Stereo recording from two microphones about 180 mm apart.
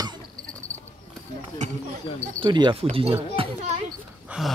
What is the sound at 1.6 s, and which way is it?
Speech, 40° right (ahead or behind).